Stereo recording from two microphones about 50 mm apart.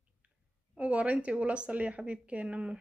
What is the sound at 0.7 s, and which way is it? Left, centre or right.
Speech, right.